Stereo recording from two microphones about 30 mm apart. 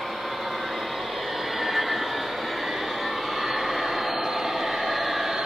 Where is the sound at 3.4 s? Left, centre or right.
Centre.